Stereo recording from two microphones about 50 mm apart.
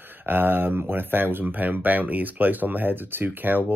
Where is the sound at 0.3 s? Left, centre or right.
Right.